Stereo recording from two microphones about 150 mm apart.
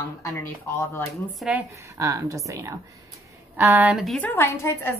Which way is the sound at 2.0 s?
20° right (ahead or behind).